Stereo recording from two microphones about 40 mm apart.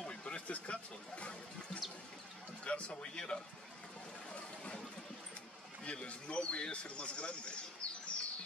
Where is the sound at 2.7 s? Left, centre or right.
Left.